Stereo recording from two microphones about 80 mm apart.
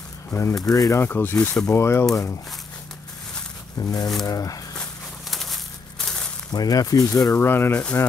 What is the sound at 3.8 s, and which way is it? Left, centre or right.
Speech, left.